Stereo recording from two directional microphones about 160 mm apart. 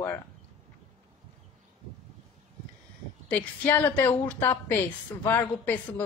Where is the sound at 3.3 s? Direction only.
10° left (ahead or behind).